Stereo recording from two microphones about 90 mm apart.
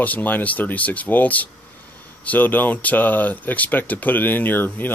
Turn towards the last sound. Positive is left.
turn(degrees=20)  # may be behind; listen again after turning